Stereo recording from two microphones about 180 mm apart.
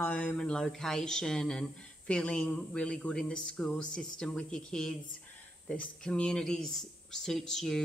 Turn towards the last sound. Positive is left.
turn(degrees=5)  # may be behind; listen again after turning